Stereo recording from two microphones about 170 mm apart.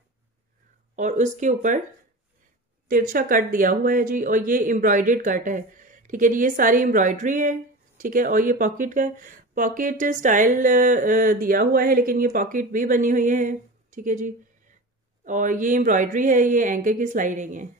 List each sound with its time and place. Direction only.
0.9 s speech: 45° right (ahead or behind)
2.9 s speech: 55° right (ahead or behind)